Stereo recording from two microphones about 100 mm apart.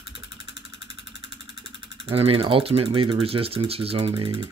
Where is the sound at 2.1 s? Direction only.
75° right (ahead or behind).